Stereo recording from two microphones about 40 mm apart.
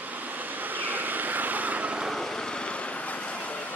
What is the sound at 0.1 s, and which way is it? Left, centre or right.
Vehicle, right.